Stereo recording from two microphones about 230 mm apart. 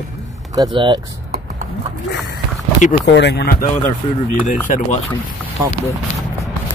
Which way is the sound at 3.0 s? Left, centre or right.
Left.